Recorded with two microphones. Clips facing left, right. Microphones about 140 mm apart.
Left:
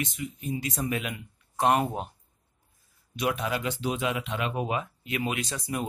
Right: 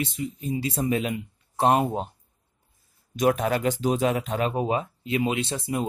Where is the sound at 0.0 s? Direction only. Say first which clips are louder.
Right 4 dB; 30° right (ahead or behind).